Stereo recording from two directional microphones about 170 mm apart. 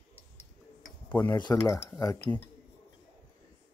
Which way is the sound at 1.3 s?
20° left (ahead or behind).